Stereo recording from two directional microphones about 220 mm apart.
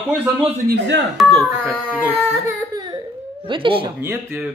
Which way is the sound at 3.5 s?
25° right (ahead or behind).